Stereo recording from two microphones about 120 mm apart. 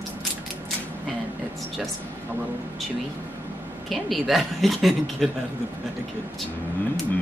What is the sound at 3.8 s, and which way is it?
A woman's voice, centre (ahead or behind).